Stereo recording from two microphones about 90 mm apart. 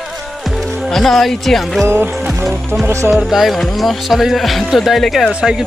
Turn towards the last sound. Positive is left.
turn(degrees=-10)  # may be behind; listen again after turning